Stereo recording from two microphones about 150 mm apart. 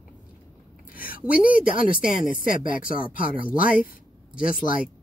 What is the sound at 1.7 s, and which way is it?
A woman's voice, 65° left (ahead or behind).